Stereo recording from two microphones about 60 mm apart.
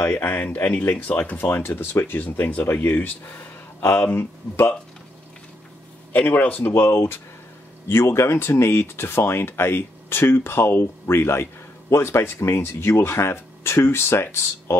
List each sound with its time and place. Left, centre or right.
0.0 s speech: left
6.1 s speech: left
6.7 s speech: left